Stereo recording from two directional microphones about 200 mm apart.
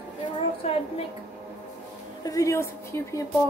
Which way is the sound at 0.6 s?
30° left (ahead or behind).